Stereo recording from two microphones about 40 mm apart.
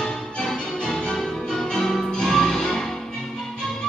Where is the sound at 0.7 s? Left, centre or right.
Centre.